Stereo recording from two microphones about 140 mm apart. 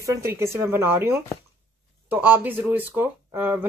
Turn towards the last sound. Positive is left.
turn(degrees=-10)  # may be behind; listen again after turning